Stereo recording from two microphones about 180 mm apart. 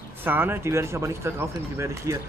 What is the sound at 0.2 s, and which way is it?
Speech, 10° right (ahead or behind).